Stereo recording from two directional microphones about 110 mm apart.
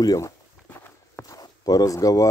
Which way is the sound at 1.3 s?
35° left (ahead or behind).